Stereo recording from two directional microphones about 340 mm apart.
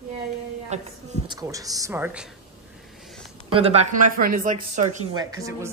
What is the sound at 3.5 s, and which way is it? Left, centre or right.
Speech, centre.